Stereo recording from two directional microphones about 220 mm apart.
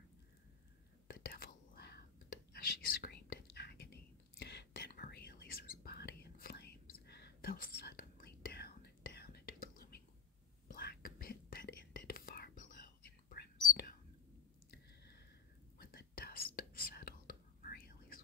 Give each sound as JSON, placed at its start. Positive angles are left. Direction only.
{"t": 1.0, "sound": "whispering", "side_deg": 45}
{"t": 15.8, "sound": "whispering", "side_deg": 45}